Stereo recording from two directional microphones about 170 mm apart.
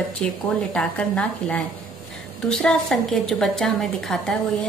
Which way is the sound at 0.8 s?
5° left (ahead or behind).